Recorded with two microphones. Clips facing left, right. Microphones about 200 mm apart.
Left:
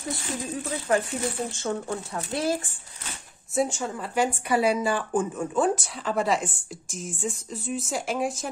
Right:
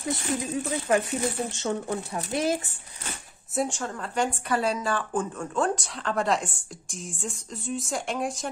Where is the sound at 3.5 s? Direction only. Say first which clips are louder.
Left 2 dB; centre (ahead or behind).